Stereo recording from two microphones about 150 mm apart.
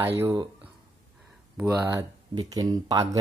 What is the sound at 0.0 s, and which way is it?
Speech, 15° right (ahead or behind).